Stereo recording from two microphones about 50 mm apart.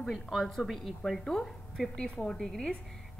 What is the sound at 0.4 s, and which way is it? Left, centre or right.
A woman's voice, centre.